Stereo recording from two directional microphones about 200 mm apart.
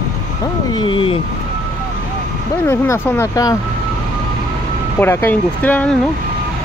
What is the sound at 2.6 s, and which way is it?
Speech, 15° left (ahead or behind).